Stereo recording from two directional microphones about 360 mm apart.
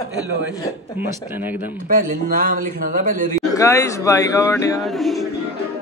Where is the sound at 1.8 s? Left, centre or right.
Right.